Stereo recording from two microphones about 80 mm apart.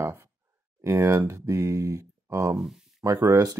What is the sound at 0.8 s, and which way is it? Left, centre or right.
Speech, right.